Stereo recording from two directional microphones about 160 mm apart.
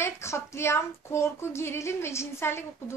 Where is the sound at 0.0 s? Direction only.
15° left (ahead or behind).